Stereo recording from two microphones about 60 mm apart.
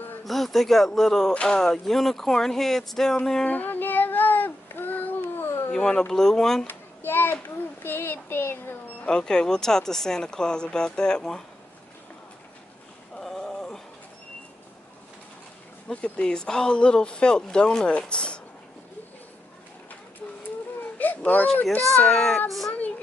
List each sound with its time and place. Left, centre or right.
0.2 s speech: centre
3.4 s child singing: left
5.7 s speech: centre
6.7 s a child's voice: left
9.0 s speech: centre
13.2 s a sound: centre
15.9 s speech: centre
20.8 s baby cry: left
21.7 s a child's voice: left
22.7 s a sound: left